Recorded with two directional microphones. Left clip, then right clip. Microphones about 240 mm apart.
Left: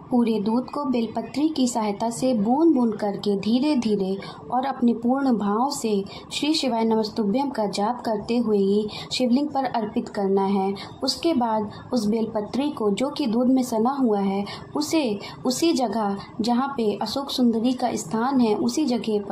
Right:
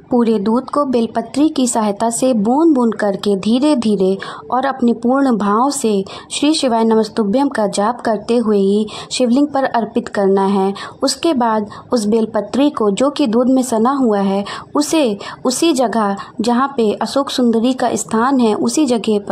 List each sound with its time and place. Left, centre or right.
0.1 s a woman's voice: right